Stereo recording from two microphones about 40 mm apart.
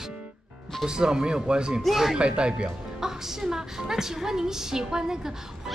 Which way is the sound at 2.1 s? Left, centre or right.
Right.